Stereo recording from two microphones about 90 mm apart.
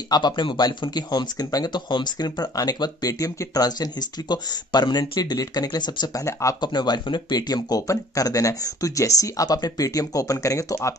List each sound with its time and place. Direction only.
0.1 s speech: 60° left (ahead or behind); by 11.0 s 35° left (ahead or behind)